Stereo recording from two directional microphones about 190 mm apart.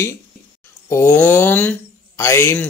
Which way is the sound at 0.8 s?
15° left (ahead or behind).